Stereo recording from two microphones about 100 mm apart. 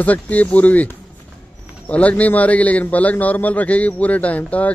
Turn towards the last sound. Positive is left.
turn(degrees=15)  # may be behind; listen again after turning